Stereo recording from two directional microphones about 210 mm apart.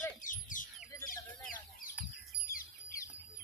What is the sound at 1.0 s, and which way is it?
Chicken, 40° left (ahead or behind).